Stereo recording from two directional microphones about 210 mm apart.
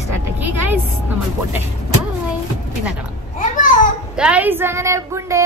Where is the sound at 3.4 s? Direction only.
40° left (ahead or behind).